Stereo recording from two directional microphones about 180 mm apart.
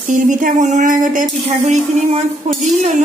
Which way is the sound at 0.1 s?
45° right (ahead or behind).